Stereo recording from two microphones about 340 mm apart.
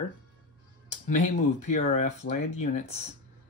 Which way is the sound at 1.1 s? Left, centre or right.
Left.